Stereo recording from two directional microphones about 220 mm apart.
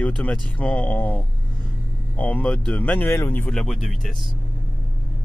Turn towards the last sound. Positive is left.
turn(degrees=0)  # may be behind; listen again after turning